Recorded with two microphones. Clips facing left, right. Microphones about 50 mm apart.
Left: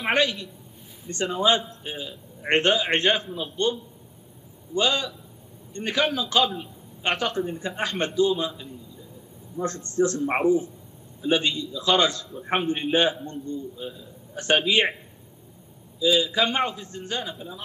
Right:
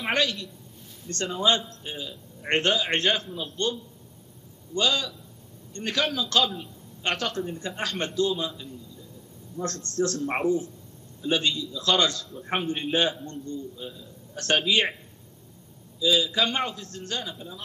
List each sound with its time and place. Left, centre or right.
0.0 s a man's voice: centre
1.3 s a man's voice: centre
16.0 s a man's voice: centre